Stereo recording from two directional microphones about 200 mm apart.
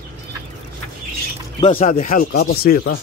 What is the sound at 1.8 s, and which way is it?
Speech, 40° left (ahead or behind).